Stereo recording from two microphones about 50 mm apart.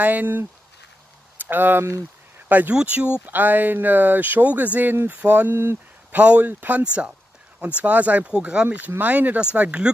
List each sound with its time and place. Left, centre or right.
0.0 s speech: right
1.4 s speech: right
2.7 s speech: right
3.3 s speech: right
8.3 s speech: centre
9.0 s speech: right